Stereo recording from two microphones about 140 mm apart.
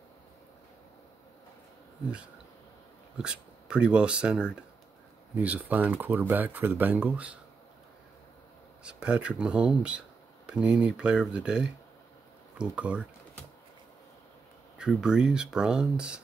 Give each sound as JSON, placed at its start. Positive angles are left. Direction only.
{"t": 3.2, "sound": "speech", "side_deg": -5}
{"t": 8.8, "sound": "speech", "side_deg": -5}
{"t": 14.8, "sound": "speech", "side_deg": -5}